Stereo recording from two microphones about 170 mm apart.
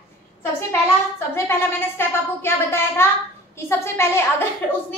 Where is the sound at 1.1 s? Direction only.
15° left (ahead or behind).